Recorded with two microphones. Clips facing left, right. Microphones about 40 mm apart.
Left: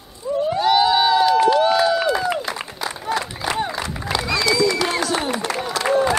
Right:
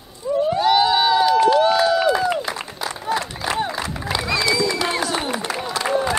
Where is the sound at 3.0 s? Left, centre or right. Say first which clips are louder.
Even; centre.